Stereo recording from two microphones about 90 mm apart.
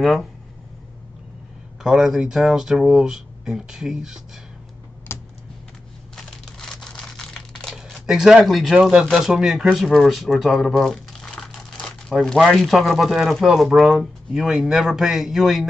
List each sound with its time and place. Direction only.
0.0 s speech: centre (ahead or behind)
1.8 s speech: 5° right (ahead or behind)
5.1 s typing: 25° left (ahead or behind)
6.4 s crumpling: 5° left (ahead or behind)
9.1 s speech: 5° right (ahead or behind)